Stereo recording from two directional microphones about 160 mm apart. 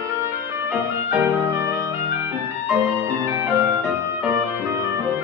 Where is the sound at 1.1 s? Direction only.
15° right (ahead or behind).